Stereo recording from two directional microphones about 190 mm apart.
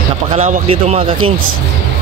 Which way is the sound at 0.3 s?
35° right (ahead or behind).